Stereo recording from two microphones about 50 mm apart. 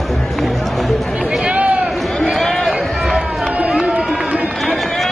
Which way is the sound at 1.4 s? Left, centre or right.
Right.